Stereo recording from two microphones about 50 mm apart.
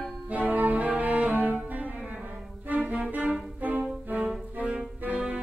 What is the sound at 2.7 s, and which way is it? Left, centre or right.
Music, right.